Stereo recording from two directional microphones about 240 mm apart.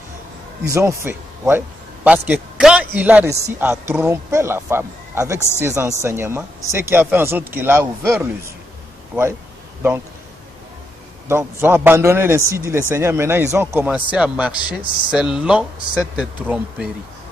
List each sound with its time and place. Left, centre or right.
0.7 s a man's voice: centre
11.2 s speech: centre